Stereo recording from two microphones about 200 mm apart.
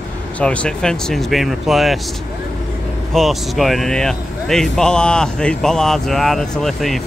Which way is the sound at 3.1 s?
Centre (ahead or behind).